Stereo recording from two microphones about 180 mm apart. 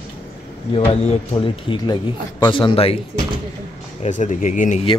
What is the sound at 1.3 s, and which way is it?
A man's voice, 25° left (ahead or behind).